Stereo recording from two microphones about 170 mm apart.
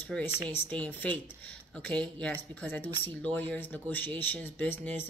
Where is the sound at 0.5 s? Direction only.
10° left (ahead or behind).